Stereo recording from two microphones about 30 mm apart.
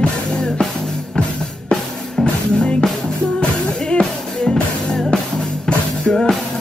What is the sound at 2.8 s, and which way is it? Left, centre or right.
Music, left.